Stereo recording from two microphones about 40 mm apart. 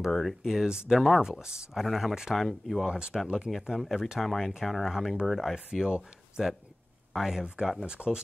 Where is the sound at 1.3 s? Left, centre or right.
Right.